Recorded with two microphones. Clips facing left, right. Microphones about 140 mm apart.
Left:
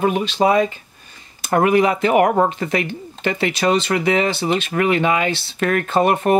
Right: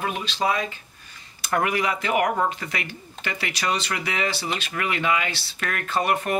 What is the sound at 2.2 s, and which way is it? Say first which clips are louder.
Speech: left 7 dB; 45° left (ahead or behind).